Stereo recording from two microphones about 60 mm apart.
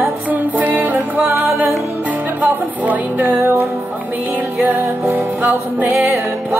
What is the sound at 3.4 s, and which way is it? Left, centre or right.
Music, right.